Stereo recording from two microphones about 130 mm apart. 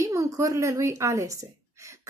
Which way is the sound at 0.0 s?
25° right (ahead or behind).